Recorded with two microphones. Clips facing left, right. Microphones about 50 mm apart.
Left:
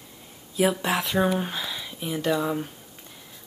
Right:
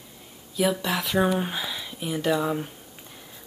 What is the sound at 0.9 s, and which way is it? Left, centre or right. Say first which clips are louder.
Speech: even; centre.